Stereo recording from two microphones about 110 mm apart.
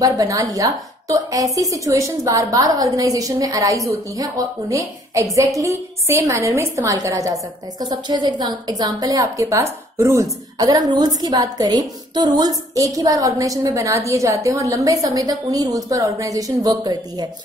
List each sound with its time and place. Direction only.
0.0 s a woman's voice: 35° right (ahead or behind)